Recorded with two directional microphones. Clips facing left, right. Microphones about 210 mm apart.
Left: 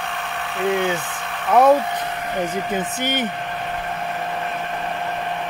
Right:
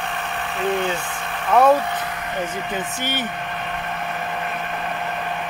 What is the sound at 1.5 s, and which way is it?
Speech, 10° left (ahead or behind).